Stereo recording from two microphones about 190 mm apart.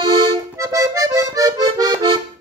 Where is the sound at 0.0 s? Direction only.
20° right (ahead or behind).